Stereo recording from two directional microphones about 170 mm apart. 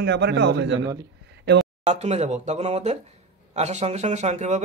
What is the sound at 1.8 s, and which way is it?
Speech, 40° right (ahead or behind).